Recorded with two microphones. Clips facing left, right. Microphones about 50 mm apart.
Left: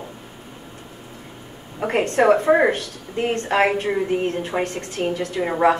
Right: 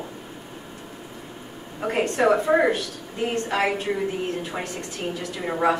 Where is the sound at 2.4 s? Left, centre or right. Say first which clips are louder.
Left 3 dB; left.